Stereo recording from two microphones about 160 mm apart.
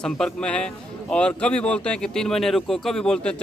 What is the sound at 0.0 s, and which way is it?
A man's voice, 5° left (ahead or behind).